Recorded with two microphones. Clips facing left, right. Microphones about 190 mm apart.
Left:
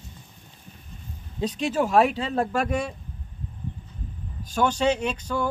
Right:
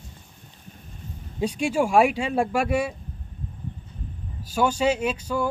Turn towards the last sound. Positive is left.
turn(degrees=-5)  # may be behind; listen again after turning